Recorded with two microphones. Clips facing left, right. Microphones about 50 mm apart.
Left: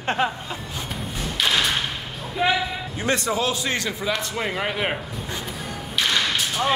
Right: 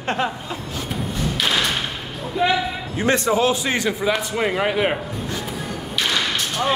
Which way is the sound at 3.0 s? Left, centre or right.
Right.